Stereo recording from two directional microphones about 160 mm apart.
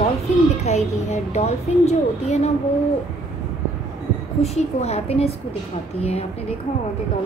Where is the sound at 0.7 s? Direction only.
45° left (ahead or behind).